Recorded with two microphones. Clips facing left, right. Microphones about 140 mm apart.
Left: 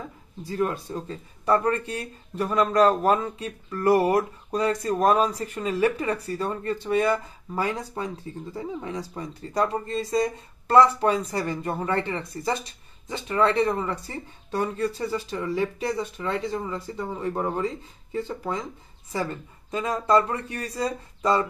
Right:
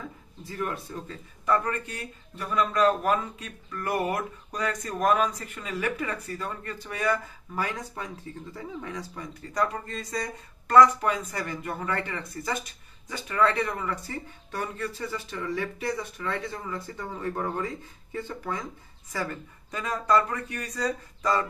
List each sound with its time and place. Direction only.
0.5 s speech: 30° left (ahead or behind)